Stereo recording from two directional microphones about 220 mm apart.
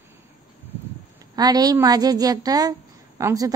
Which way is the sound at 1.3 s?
15° right (ahead or behind).